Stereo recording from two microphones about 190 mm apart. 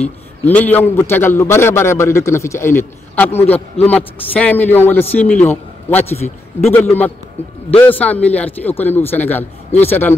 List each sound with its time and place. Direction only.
0.0 s a man's voice: 5° left (ahead or behind)
6.0 s a man's voice: 35° left (ahead or behind)
7.7 s a man's voice: 10° left (ahead or behind)